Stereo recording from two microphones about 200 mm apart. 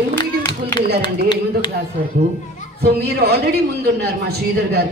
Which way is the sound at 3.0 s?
55° right (ahead or behind).